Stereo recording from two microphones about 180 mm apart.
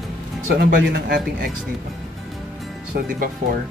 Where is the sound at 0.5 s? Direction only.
60° right (ahead or behind).